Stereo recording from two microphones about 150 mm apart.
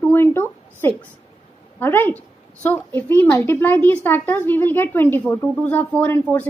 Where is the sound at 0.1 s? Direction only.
15° left (ahead or behind).